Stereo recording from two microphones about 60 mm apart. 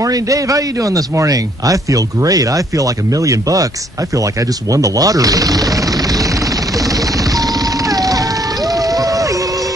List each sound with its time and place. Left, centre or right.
0.0 s a man's voice: right
4.7 s speech: right
7.9 s music: right
8.7 s a sound: right